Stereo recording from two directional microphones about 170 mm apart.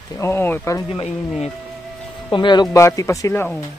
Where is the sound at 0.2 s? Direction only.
15° left (ahead or behind).